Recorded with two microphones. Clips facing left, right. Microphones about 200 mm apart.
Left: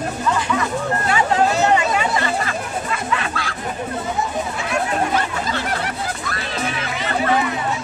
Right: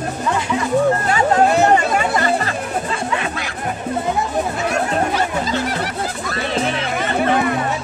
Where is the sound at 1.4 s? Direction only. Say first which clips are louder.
Right 3 dB; 55° right (ahead or behind).